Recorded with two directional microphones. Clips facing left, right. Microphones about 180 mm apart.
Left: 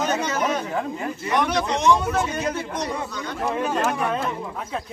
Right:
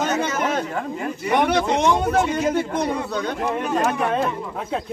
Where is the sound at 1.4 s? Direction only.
60° right (ahead or behind).